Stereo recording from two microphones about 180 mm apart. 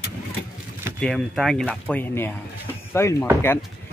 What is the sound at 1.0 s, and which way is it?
Speech, centre (ahead or behind).